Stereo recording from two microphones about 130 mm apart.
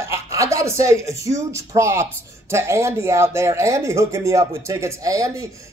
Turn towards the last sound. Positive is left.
turn(degrees=-25)  # may be behind; listen again after turning